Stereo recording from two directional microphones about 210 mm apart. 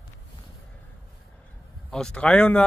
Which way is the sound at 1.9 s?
5° left (ahead or behind).